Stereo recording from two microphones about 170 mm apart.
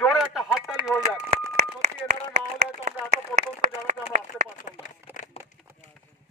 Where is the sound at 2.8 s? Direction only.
45° right (ahead or behind).